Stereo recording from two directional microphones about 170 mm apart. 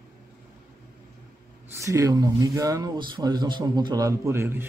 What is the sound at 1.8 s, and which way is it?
Speech, 20° right (ahead or behind).